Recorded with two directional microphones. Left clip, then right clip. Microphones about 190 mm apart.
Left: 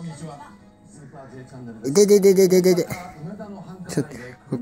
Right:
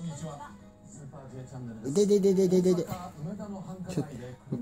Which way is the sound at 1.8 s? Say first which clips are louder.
Left 10 dB; 20° left (ahead or behind).